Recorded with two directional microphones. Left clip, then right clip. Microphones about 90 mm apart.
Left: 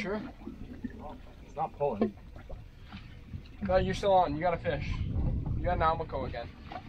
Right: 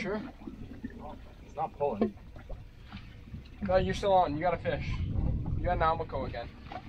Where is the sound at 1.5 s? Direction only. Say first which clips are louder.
Even; 30° right (ahead or behind).